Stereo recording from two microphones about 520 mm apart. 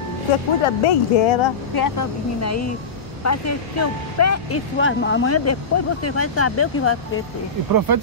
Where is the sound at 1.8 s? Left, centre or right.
Left.